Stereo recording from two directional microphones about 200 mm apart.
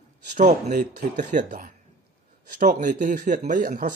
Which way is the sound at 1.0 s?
35° right (ahead or behind).